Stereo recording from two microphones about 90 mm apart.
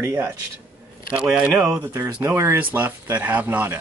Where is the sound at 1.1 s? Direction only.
10° right (ahead or behind).